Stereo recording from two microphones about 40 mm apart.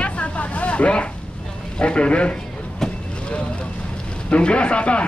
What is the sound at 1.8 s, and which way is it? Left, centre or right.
Speech, left.